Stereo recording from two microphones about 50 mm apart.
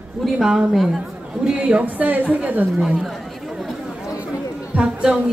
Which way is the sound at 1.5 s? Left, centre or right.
Right.